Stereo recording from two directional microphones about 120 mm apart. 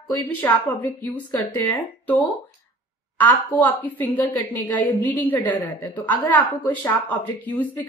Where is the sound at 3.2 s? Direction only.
15° left (ahead or behind).